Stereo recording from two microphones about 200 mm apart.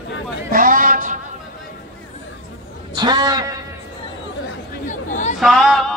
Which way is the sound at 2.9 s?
20° right (ahead or behind).